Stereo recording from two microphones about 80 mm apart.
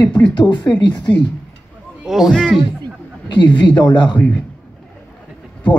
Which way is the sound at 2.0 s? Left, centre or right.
Centre.